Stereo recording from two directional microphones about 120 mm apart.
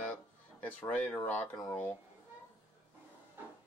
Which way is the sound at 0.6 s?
10° left (ahead or behind).